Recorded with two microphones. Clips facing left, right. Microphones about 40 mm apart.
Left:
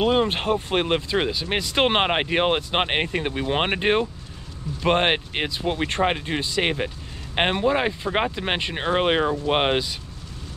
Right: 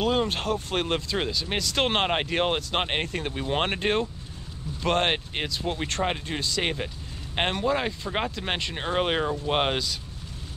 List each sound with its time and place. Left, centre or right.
0.0 s speech: left